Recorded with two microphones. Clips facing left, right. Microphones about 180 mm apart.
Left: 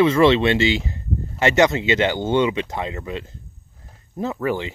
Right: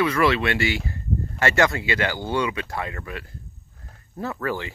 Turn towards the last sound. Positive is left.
turn(degrees=20)  # may be behind; listen again after turning